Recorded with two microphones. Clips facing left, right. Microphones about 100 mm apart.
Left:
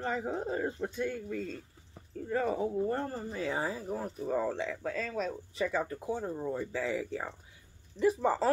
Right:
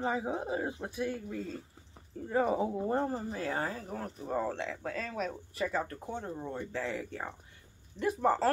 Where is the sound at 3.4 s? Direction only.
Centre (ahead or behind).